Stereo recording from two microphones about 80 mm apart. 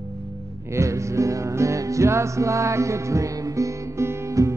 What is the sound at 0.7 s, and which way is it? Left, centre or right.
Music, right.